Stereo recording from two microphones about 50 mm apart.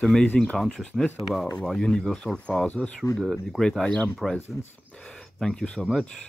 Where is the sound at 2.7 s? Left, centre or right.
Left.